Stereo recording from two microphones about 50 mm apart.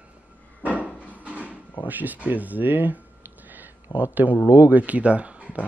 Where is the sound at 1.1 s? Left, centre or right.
Right.